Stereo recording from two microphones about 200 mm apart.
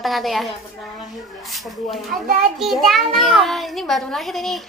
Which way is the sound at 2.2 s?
45° right (ahead or behind).